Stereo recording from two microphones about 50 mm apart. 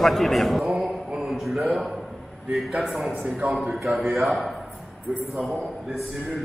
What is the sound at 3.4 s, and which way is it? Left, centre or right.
Speech, right.